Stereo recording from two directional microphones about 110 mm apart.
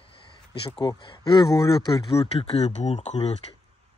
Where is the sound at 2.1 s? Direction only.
70° left (ahead or behind); by 3.2 s 90° left.